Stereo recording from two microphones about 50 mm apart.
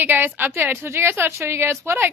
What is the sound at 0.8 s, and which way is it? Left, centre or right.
Speech, right.